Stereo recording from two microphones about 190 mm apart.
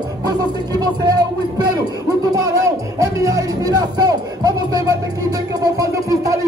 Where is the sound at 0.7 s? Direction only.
20° right (ahead or behind).